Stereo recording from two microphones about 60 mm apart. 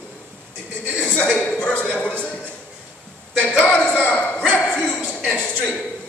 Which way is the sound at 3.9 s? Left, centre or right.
Centre.